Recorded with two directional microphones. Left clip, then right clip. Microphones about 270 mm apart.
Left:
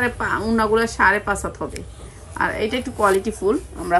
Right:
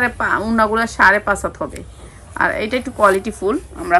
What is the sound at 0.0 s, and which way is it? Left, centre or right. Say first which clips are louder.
A woman's voice: right 4 dB; centre.